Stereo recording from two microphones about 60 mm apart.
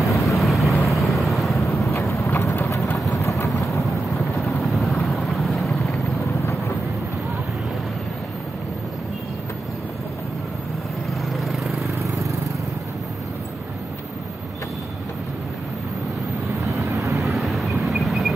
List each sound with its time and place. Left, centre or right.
0.0 s vehicle: left
0.4 s vehicle: centre
2.0 s clip-clop: left
3.1 s vehicle: left
4.4 s vehicle: centre
11.3 s vehicle: centre
11.8 s vehicle: right
16.9 s vehicle: right
17.2 s vehicle: centre